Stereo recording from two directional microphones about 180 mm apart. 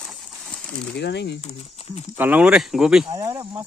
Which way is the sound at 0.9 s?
70° left (ahead or behind).